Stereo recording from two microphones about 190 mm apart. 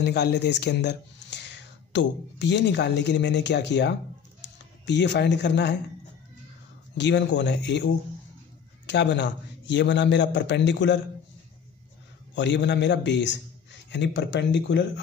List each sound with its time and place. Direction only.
0.0 s speech: 60° left (ahead or behind)
7.0 s a man's voice: 65° left (ahead or behind)
12.4 s a man's voice: 65° left (ahead or behind)